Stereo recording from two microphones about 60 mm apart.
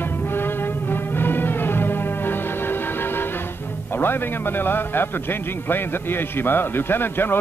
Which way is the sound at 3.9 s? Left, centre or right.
Left.